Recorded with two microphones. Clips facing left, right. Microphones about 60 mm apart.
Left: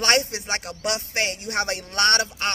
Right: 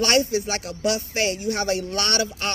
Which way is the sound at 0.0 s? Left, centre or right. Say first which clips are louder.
Right 2 dB; left.